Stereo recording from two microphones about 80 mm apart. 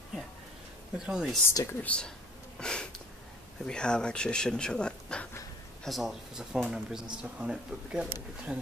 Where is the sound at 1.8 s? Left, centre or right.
Centre.